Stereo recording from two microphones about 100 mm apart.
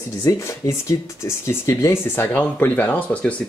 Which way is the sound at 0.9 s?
30° left (ahead or behind).